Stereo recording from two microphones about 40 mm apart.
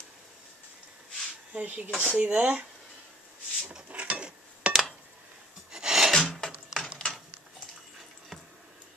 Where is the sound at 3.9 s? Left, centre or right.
Right.